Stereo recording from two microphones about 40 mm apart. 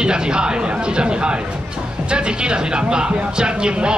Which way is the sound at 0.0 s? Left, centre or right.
Right.